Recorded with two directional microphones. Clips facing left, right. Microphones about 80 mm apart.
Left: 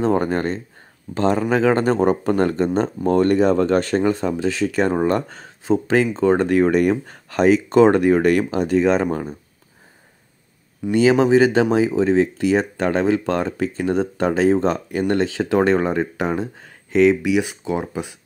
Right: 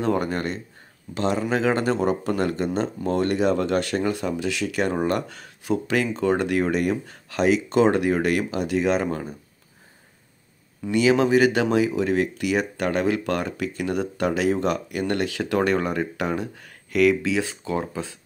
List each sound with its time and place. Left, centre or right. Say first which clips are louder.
0.0 s speech: left 5 dB; left
10.9 s speech: left 4 dB; left